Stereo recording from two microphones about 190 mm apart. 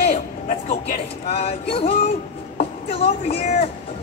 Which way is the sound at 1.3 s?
30° left (ahead or behind).